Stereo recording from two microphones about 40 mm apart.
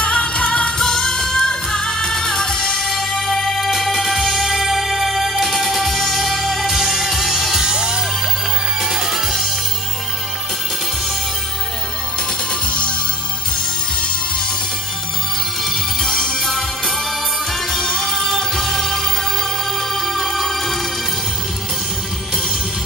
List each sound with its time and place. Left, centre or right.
0.0 s music: left; by 6.7 s centre
6.7 s music: centre
7.6 s music: centre
15.6 s music: centre